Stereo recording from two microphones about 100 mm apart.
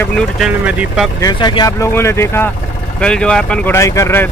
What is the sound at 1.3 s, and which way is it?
Speech, 50° left (ahead or behind).